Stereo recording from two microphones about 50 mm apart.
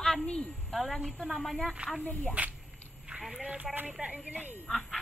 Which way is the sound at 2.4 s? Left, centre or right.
Right.